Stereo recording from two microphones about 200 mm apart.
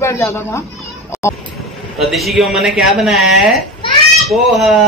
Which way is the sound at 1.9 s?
Centre (ahead or behind).